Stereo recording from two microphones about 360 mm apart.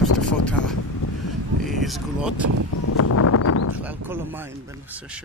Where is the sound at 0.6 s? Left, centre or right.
Left.